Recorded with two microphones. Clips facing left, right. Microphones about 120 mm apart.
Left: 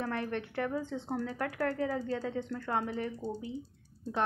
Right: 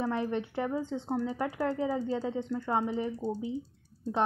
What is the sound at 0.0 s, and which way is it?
Speech, 10° right (ahead or behind).